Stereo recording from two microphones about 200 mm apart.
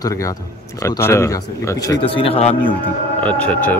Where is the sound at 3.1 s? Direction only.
5° left (ahead or behind).